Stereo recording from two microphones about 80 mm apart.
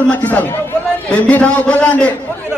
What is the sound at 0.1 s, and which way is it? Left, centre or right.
A man's voice, centre.